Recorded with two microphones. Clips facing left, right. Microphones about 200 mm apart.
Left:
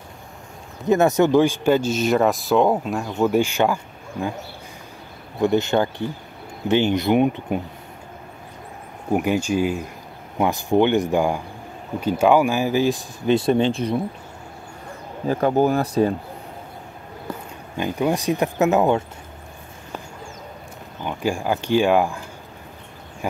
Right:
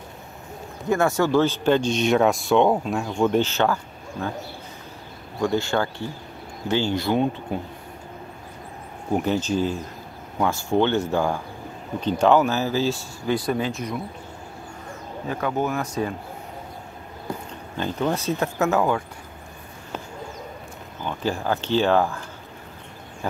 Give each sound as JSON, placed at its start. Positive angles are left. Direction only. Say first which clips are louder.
{"t": 0.8, "sound": "speech", "louder": "left 4 dB", "side_deg": 20}
{"t": 5.4, "sound": "speech", "louder": "left 4 dB", "side_deg": 20}
{"t": 9.1, "sound": "speech", "louder": "left 2 dB", "side_deg": 10}
{"t": 15.2, "sound": "speech", "louder": "left 7 dB", "side_deg": 35}
{"t": 17.7, "sound": "speech", "louder": "left 3 dB", "side_deg": 15}
{"t": 21.0, "sound": "speech", "louder": "left 2 dB", "side_deg": 15}